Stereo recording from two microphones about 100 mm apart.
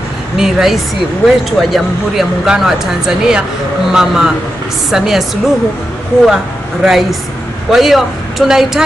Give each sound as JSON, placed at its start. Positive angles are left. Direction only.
{"t": 0.4, "sound": "speech", "side_deg": -5}